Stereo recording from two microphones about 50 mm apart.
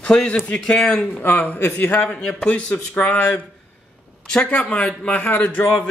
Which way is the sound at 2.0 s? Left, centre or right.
Left.